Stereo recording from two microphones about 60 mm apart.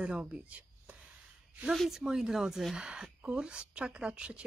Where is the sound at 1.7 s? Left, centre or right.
Centre.